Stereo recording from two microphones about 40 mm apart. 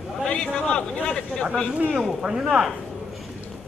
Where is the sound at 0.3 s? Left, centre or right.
Left.